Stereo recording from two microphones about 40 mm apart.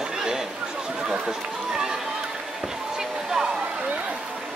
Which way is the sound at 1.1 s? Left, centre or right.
Centre.